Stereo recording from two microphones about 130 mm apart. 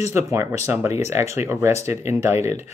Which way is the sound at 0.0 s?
20° right (ahead or behind).